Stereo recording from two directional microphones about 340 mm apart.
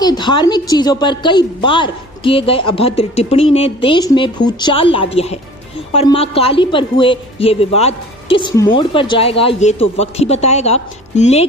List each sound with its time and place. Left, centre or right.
0.0 s a woman's voice: centre